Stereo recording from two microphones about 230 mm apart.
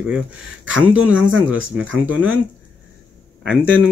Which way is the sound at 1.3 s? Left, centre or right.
Right.